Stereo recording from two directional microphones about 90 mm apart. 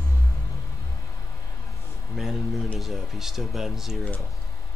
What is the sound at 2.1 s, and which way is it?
Speech, centre (ahead or behind).